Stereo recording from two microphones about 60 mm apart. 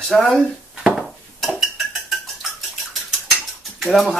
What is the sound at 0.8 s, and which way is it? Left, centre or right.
Dishes, centre.